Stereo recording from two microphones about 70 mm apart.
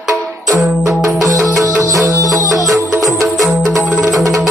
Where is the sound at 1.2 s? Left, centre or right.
Right.